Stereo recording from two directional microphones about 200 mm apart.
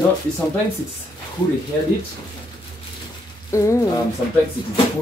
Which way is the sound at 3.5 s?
15° left (ahead or behind).